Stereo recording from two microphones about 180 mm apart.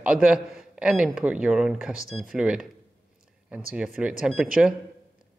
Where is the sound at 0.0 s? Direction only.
5° right (ahead or behind).